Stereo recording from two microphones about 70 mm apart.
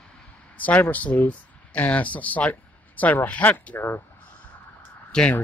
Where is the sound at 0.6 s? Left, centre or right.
Left.